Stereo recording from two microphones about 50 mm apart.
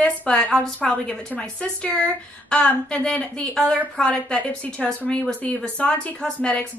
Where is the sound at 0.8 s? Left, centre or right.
Left.